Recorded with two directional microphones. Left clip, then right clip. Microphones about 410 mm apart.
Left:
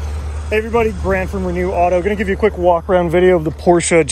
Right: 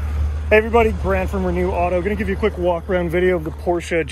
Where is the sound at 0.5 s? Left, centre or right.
Centre.